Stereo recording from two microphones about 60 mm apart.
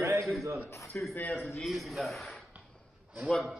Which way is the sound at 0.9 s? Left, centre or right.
Centre.